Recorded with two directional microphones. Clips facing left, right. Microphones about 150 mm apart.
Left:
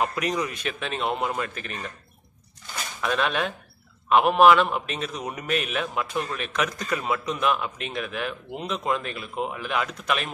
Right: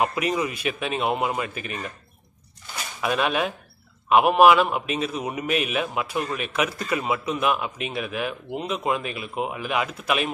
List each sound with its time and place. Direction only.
0.0 s a man's voice: 5° right (ahead or behind)
2.6 s a sound: 10° right (ahead or behind)
4.1 s a man's voice: 5° right (ahead or behind)